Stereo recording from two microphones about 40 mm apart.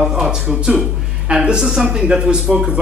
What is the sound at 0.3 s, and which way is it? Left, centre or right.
Speech, right.